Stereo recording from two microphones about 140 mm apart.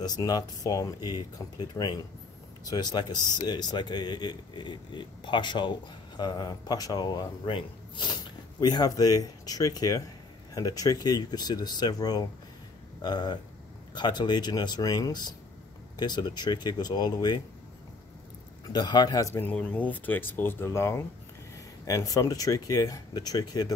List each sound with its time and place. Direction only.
0.0 s speech: 30° left (ahead or behind)
18.7 s speech: 30° left (ahead or behind)